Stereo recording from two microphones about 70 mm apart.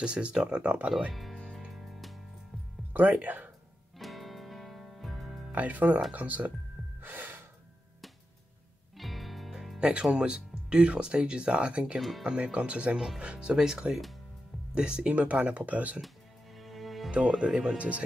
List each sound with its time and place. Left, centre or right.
0.0 s speech: centre
0.8 s speech: centre
1.9 s music: centre
2.9 s speech: right
4.0 s music: centre
5.5 s speech: right
7.0 s gasp: right
8.9 s music: centre
9.8 s speech: centre
12.0 s speech: centre
12.3 s speech: centre
16.5 s music: centre
17.1 s speech: centre